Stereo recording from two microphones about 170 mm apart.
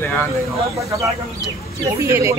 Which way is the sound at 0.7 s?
20° right (ahead or behind).